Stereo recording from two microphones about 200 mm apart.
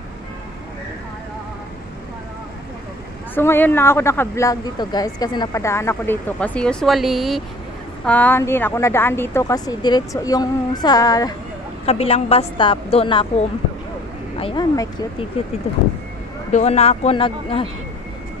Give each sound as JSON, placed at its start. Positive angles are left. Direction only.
{"t": 3.3, "sound": "speech", "side_deg": 10}
{"t": 11.8, "sound": "a woman's voice", "side_deg": 30}
{"t": 14.4, "sound": "a woman's voice", "side_deg": 20}
{"t": 16.5, "sound": "speech", "side_deg": 30}